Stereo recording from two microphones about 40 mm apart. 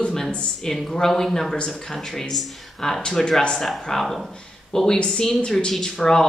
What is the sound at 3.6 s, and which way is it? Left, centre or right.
Speech, centre.